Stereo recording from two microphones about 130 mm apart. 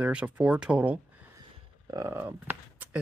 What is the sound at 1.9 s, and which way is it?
Speech, 25° right (ahead or behind).